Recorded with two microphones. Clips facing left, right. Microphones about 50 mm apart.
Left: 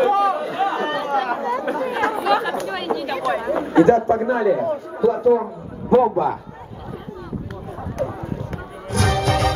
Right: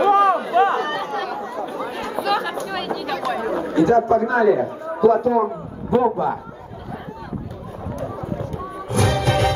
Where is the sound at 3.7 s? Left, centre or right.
Left.